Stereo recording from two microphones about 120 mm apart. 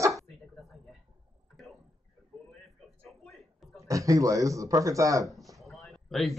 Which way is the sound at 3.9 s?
25° right (ahead or behind).